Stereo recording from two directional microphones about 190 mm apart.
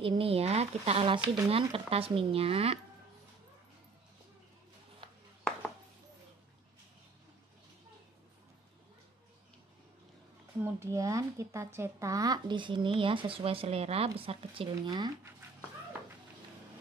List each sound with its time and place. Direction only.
0.0 s speech: 30° right (ahead or behind)
10.6 s speech: 15° right (ahead or behind)